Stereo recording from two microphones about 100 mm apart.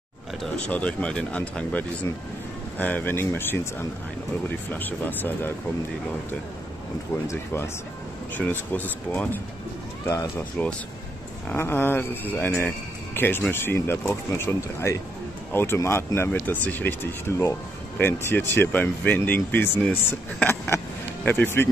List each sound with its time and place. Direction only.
0.6 s speech: 15° left (ahead or behind)
7.2 s speech: 25° left (ahead or behind)
11.4 s speech: 25° left (ahead or behind)